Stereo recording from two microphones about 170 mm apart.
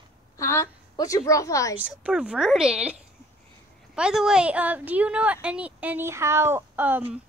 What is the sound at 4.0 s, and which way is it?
A woman's voice, 5° right (ahead or behind).